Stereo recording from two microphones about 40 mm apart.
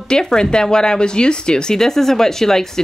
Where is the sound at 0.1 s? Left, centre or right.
Centre.